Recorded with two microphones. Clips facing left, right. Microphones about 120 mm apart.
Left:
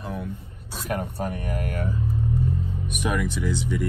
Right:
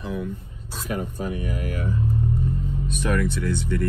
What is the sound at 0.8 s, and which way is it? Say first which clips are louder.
Speech: even; 60° left (ahead or behind).